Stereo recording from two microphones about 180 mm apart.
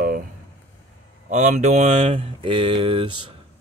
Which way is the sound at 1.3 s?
40° right (ahead or behind).